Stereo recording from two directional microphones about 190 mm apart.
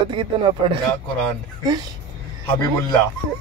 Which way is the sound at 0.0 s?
25° right (ahead or behind).